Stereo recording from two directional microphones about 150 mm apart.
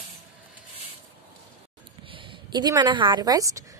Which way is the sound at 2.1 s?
35° right (ahead or behind).